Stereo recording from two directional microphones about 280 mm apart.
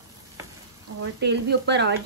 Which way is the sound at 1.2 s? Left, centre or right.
Right.